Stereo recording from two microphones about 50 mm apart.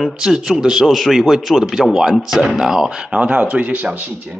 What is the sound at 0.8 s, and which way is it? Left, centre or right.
Speech, centre.